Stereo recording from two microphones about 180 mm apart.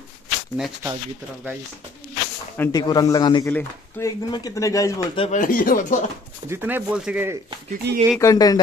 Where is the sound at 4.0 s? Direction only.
10° left (ahead or behind).